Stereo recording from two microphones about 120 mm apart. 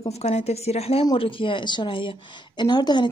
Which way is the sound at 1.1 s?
45° left (ahead or behind).